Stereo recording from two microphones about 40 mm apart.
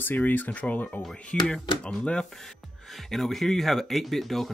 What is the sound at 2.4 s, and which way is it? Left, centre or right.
Speech, centre.